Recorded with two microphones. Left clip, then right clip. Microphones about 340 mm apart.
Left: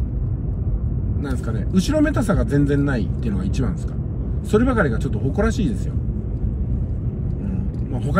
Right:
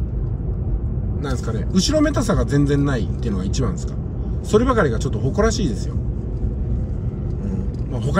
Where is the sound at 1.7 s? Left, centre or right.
Centre.